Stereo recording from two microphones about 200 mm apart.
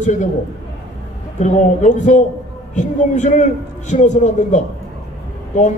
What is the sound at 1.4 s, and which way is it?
A man's voice, 35° left (ahead or behind).